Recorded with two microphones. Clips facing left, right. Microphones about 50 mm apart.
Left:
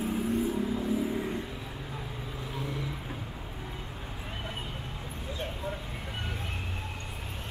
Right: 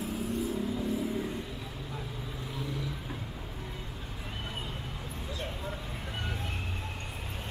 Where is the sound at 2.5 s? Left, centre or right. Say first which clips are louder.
Left 1 dB; left.